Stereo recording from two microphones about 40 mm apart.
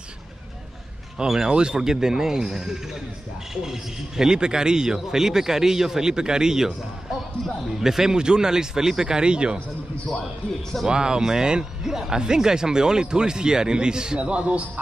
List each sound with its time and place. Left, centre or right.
1.1 s a man's voice: centre
10.9 s speech: centre